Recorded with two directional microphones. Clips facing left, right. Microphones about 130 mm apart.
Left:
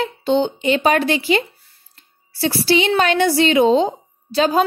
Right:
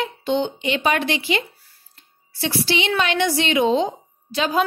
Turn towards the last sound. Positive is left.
turn(degrees=35)  # may be behind; listen again after turning